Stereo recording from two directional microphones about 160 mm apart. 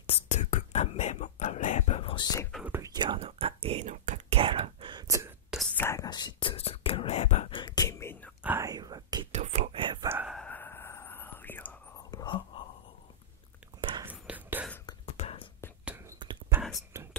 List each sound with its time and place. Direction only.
0.0 s whispering: 50° left (ahead or behind); by 2.4 s 25° left (ahead or behind)
2.6 s whispering: 15° right (ahead or behind)
2.9 s whispering: 30° right (ahead or behind)
5.8 s whispering: 15° left (ahead or behind)
6.0 s whispering: 25° left (ahead or behind)
8.4 s whispering: 15° right (ahead or behind)
9.3 s whispering: 45° right (ahead or behind)
10.0 s a sound: 10° right (ahead or behind)
10.3 s whispering: 10° left (ahead or behind)
12.1 s whispering: 25° left (ahead or behind)
13.7 s whispering: 30° right (ahead or behind)
14.0 s whispering: 10° right (ahead or behind)
15.1 s whispering: 40° left (ahead or behind)
16.9 s whispering: 15° right (ahead or behind)